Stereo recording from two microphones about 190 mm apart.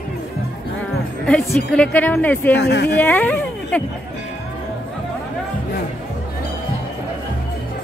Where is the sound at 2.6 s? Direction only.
65° left (ahead or behind).